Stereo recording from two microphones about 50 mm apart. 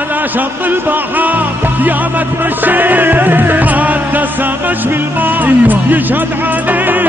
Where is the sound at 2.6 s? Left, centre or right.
Right.